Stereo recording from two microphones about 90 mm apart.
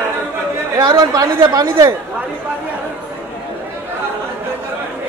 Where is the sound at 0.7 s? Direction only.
45° right (ahead or behind).